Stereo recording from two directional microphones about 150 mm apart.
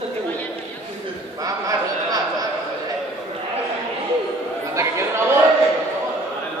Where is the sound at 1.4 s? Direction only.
25° right (ahead or behind).